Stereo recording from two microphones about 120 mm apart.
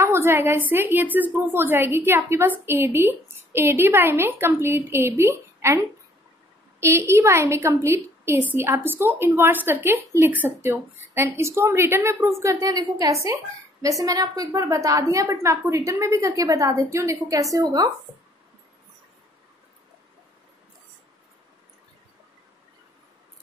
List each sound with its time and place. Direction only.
0.0 s a woman's voice: 20° right (ahead or behind)